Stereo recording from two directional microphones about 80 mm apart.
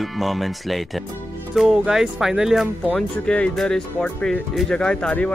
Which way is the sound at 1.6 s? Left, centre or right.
Centre.